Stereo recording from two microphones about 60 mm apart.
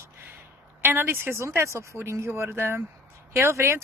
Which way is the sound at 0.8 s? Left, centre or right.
Right.